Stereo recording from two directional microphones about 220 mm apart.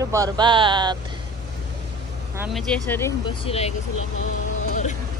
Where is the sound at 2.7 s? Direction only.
10° left (ahead or behind).